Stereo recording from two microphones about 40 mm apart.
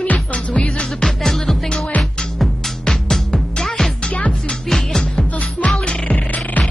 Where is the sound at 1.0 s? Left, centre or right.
Centre.